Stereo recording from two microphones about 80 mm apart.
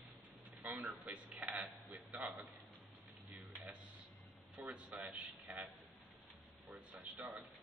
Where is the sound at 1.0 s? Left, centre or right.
Right.